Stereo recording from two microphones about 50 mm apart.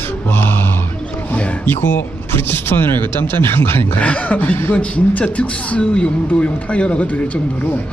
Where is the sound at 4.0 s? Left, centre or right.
Left.